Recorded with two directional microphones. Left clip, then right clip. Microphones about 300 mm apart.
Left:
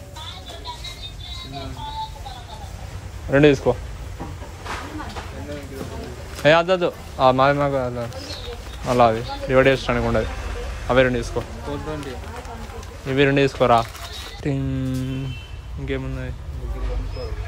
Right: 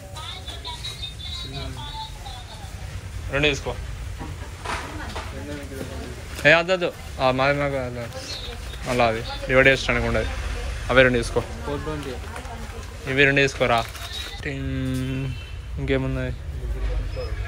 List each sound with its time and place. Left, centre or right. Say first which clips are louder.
3.3 s speech: left 7 dB; centre
6.4 s speech: left 1 dB; centre
13.0 s speech: even; centre